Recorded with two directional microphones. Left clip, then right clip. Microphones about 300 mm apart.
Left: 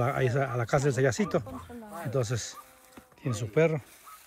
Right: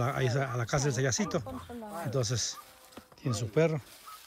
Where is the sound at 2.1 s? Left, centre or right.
Centre.